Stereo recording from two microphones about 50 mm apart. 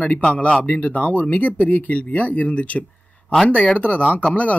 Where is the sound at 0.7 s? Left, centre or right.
Left.